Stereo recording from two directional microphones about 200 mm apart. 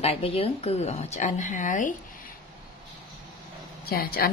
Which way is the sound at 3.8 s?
50° left (ahead or behind).